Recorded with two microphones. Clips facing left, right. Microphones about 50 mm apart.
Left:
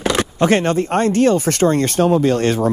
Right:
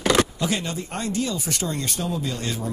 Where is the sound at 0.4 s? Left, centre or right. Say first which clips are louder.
Left 12 dB; left.